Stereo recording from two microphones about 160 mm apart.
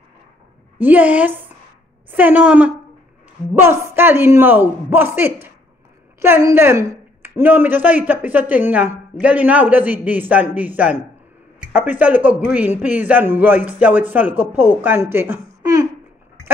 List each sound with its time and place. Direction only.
0.7 s a man's voice: 10° right (ahead or behind)
15.6 s babbling: 20° right (ahead or behind)